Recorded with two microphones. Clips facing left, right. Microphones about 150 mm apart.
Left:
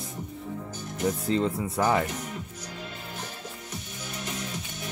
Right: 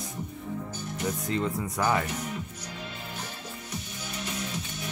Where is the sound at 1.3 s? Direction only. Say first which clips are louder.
Left 3 dB; 30° left (ahead or behind).